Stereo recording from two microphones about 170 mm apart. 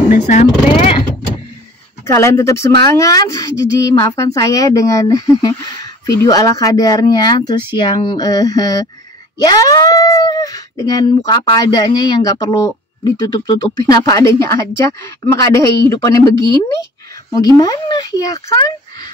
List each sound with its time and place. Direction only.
0.1 s speech: 40° left (ahead or behind)
2.1 s a woman's voice: 15° left (ahead or behind)